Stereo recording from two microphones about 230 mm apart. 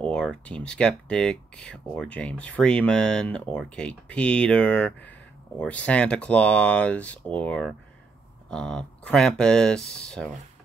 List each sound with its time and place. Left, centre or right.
0.1 s speech: centre